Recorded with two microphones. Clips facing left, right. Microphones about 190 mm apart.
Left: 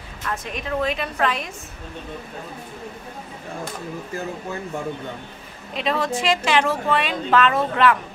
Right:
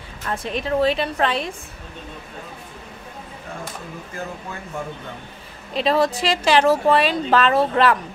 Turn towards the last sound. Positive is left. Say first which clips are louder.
# right 1 dB
turn(degrees=-35)  # may be behind; listen again after turning